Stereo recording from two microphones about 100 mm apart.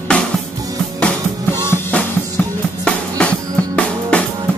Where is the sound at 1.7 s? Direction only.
15° left (ahead or behind).